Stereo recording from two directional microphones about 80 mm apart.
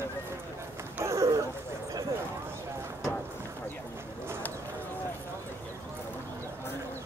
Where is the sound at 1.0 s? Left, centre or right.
Right.